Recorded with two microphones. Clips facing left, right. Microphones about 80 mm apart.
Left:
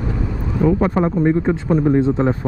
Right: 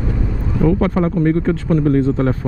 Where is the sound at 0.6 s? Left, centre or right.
Centre.